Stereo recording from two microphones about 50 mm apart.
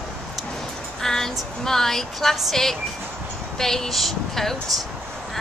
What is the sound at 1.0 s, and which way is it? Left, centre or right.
A woman's voice, centre.